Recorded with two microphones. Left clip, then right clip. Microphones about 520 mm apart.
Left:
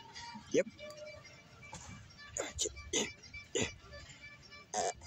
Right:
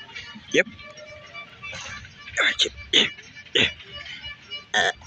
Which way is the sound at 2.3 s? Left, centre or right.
Left.